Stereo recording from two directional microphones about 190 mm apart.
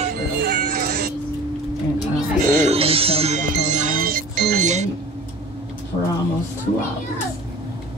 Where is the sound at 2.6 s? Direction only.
30° right (ahead or behind).